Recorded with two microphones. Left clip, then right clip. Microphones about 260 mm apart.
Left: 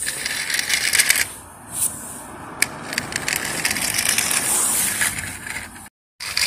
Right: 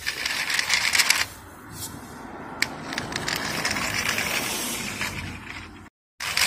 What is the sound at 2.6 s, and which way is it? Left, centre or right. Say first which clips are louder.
Crushing: left 4 dB; centre.